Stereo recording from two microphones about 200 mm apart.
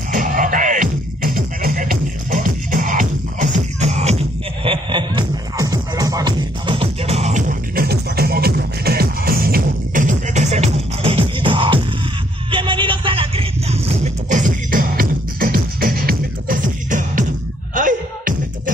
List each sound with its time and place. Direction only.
0.1 s music: 40° right (ahead or behind)
4.6 s music: 25° right (ahead or behind)
12.4 s a sound: 25° right (ahead or behind); by 18.3 s 40° right (ahead or behind)